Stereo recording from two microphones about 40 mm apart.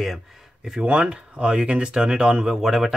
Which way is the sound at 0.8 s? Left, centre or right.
Right.